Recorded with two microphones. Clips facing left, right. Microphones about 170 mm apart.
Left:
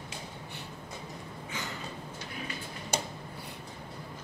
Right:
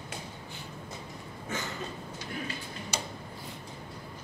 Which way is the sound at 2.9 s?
55° left (ahead or behind).